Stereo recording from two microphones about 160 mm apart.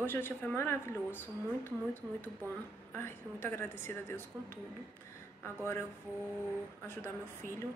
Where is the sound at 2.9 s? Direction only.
15° left (ahead or behind).